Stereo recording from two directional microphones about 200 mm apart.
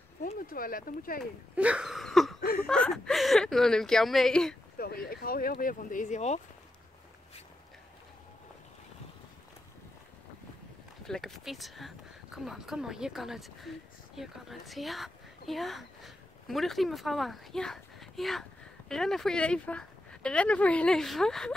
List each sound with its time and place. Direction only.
0.5 s speech: 45° left (ahead or behind)
1.5 s speech: 5° right (ahead or behind)
4.7 s speech: 50° left (ahead or behind)
11.1 s speech: centre (ahead or behind)